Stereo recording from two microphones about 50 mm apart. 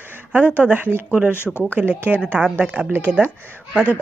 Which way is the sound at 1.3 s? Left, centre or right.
Left.